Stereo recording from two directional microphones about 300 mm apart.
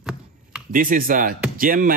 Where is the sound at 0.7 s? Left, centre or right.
Right.